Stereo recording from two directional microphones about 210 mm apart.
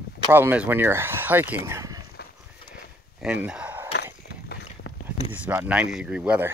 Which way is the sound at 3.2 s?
5° right (ahead or behind).